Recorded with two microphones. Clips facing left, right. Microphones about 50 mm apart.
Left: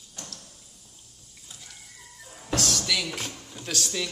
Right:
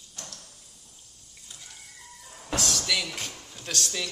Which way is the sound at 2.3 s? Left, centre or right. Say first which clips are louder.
Left 2 dB; centre.